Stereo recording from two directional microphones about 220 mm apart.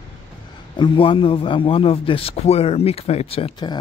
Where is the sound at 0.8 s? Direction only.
20° left (ahead or behind).